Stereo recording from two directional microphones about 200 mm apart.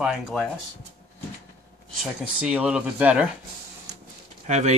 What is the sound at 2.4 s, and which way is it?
Speech, 5° right (ahead or behind).